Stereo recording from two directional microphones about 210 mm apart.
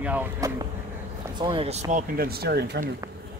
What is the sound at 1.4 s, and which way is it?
Speech, 25° right (ahead or behind).